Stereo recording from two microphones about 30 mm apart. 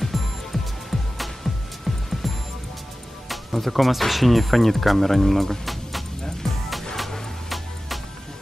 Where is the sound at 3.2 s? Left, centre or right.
Centre.